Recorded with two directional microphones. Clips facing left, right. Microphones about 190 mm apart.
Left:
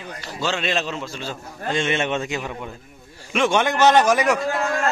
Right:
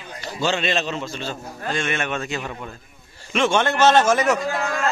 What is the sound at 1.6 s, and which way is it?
A man's voice, 20° left (ahead or behind).